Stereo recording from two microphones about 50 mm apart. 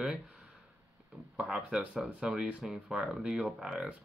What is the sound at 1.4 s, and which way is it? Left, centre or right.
Speech, centre.